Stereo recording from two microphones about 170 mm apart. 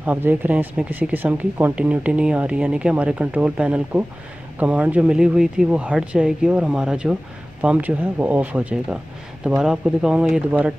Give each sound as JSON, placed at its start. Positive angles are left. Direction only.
{"t": 0.0, "sound": "speech", "side_deg": -10}